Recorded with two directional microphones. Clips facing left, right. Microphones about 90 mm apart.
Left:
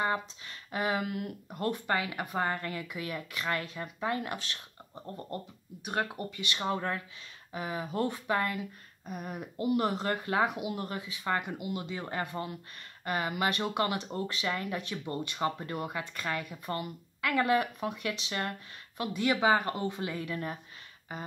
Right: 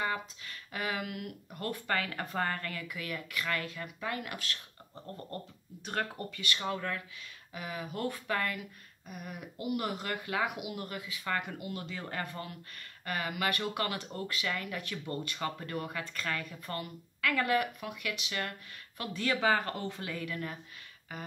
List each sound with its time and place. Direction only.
0.0 s speech: 25° left (ahead or behind)